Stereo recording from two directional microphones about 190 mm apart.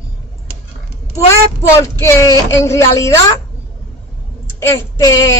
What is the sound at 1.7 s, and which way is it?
Speech, 15° left (ahead or behind).